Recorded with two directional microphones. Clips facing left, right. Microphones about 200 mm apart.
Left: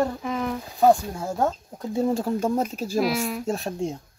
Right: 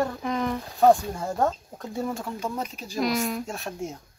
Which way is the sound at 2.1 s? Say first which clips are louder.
Left 8 dB; 40° left (ahead or behind).